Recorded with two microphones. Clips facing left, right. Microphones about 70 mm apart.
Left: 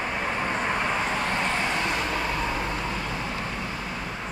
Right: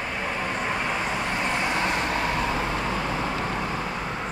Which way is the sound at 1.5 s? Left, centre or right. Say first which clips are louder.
Right 1 dB; centre.